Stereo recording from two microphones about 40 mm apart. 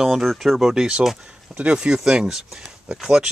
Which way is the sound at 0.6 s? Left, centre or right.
Centre.